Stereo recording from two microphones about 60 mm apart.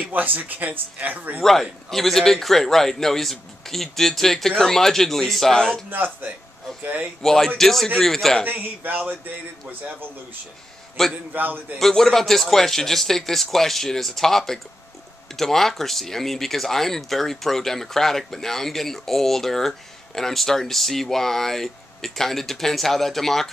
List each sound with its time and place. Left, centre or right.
0.1 s speech: right
1.4 s speech: centre
5.9 s speech: right
7.2 s speech: centre
8.5 s speech: right
11.0 s speech: centre
11.3 s speech: right
11.8 s speech: centre